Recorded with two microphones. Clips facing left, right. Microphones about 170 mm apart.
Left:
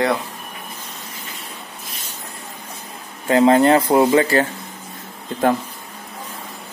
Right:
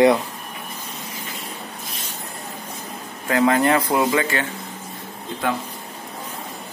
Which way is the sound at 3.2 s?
30° left (ahead or behind).